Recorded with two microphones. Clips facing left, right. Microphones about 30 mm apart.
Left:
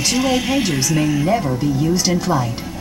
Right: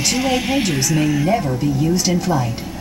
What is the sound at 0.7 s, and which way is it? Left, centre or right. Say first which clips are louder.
Speech: even; centre.